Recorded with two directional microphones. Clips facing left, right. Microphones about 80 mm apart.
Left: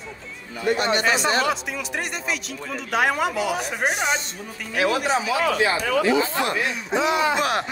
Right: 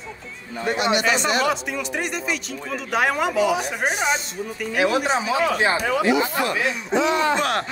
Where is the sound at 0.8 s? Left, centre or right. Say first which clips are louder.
Right 3 dB; left.